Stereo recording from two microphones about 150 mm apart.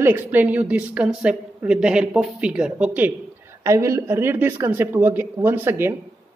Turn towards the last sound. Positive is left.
turn(degrees=-15)  # may be behind; listen again after turning